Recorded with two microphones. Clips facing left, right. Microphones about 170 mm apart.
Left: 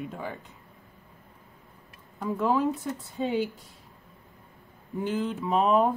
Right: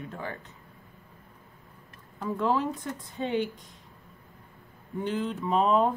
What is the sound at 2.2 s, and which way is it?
Speech, 10° left (ahead or behind).